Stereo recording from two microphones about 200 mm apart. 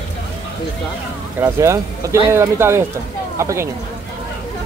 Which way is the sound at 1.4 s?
15° right (ahead or behind).